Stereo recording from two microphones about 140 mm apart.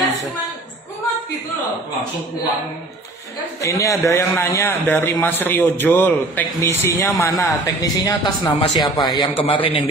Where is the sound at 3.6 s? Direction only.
20° left (ahead or behind).